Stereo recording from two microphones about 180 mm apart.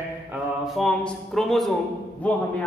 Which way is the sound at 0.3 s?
Centre (ahead or behind).